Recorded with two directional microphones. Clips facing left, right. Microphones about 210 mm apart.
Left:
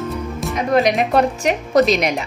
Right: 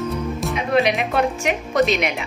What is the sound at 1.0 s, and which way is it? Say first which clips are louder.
A woman's voice: left 4 dB; 40° left (ahead or behind).